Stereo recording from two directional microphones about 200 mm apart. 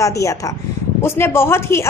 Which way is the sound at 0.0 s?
15° left (ahead or behind).